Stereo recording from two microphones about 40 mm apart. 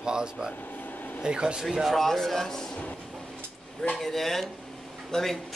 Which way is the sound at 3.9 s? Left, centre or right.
Centre.